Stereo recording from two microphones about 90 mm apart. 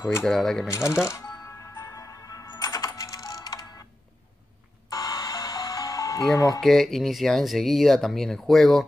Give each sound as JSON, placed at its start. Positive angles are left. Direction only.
{"t": 0.2, "sound": "speech", "side_deg": 5}
{"t": 0.7, "sound": "music", "side_deg": 35}
{"t": 2.5, "sound": "coin", "side_deg": 45}
{"t": 4.9, "sound": "music", "side_deg": 50}
{"t": 6.3, "sound": "speech", "side_deg": 40}
{"t": 6.6, "sound": "speech", "side_deg": 0}